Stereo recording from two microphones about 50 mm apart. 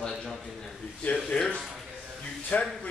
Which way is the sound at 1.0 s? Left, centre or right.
Left.